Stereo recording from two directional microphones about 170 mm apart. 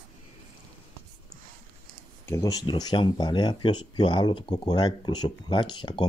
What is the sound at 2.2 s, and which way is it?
Speech, 20° left (ahead or behind).